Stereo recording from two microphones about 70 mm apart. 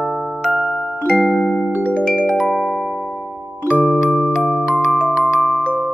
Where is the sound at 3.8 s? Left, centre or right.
Centre.